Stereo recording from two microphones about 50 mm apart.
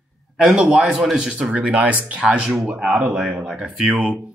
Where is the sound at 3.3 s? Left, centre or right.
Centre.